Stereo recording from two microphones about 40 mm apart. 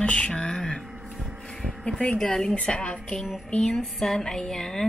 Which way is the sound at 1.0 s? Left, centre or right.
Centre.